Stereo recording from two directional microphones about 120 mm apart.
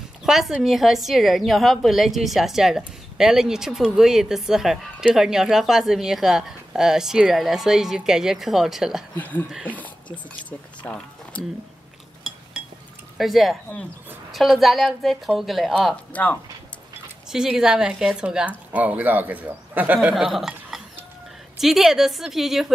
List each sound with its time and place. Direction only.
0.2 s a woman's voice: 5° right (ahead or behind)
9.1 s speech: 15° left (ahead or behind)
10.8 s a sound: 10° left (ahead or behind)
13.2 s a woman's voice: centre (ahead or behind)
16.1 s speech: 15° left (ahead or behind)
17.3 s a woman's voice: 5° right (ahead or behind)